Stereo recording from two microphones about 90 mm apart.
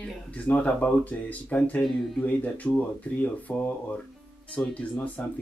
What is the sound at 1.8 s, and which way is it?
Speech, 5° left (ahead or behind).